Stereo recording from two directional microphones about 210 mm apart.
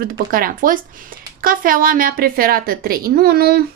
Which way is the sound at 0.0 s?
45° right (ahead or behind).